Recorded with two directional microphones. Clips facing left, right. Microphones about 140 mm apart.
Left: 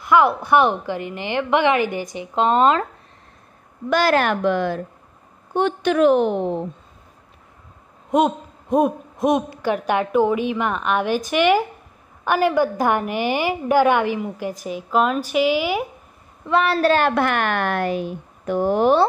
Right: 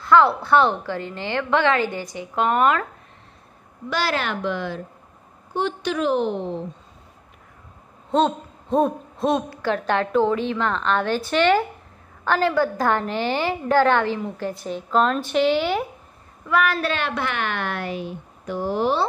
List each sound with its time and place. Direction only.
0.0 s a woman's voice: 15° left (ahead or behind)
3.9 s a woman's voice: 50° left (ahead or behind)
8.1 s a woman's voice: 15° left (ahead or behind)
16.4 s a woman's voice: 30° left (ahead or behind); by 19.0 s 50° left (ahead or behind)